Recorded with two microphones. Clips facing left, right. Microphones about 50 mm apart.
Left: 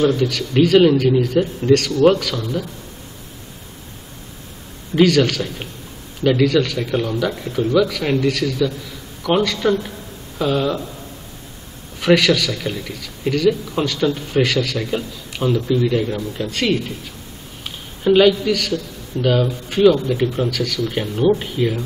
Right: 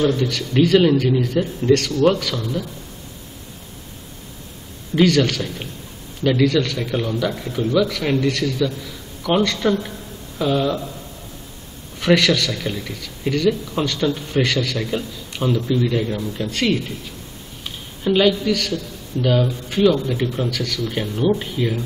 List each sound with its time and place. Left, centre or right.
0.5 s speech: centre
1.6 s a man's voice: left
2.3 s a man's voice: centre
4.9 s speech: centre
12.0 s speech: centre